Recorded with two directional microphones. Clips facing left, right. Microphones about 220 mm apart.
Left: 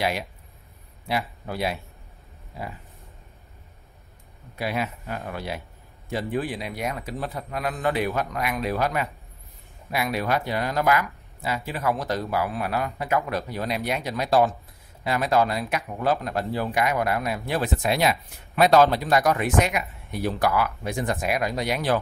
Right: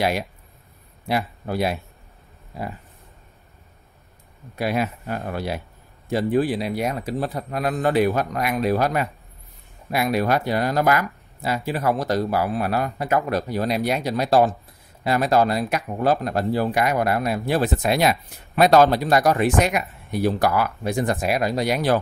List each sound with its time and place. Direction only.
1.0 s speech: 45° right (ahead or behind)
4.6 s speech: 45° right (ahead or behind)